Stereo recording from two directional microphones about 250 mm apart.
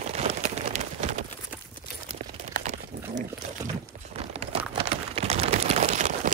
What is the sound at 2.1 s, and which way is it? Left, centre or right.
Crumpling, right.